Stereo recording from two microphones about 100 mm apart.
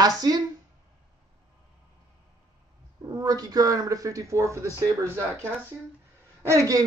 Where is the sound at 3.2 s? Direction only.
40° right (ahead or behind).